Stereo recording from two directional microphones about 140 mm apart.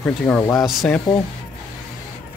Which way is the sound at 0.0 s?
10° left (ahead or behind).